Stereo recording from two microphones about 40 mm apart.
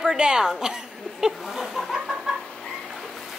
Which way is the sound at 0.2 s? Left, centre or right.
Centre.